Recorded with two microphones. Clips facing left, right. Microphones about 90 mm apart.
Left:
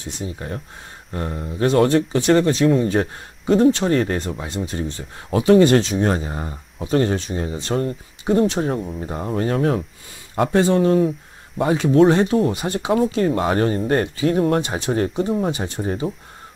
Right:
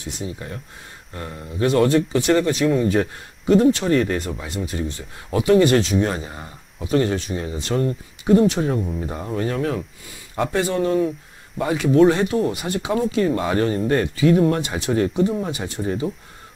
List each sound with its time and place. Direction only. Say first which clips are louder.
0.0 s speech: left 1 dB; 30° left (ahead or behind)
8.7 s speech: right 1 dB; 10° left (ahead or behind)
9.3 s speech: left 4 dB; 40° left (ahead or behind)
11.6 s speech: left 1 dB; 30° left (ahead or behind)